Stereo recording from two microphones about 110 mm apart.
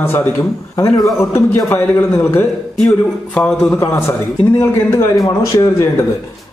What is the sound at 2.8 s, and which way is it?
Speech, 5° left (ahead or behind).